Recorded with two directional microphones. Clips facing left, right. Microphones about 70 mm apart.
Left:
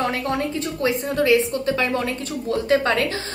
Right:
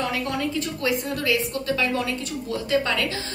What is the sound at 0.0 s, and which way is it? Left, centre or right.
A woman's voice, left.